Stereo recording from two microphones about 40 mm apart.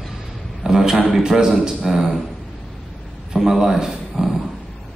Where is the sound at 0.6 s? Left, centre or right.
Centre.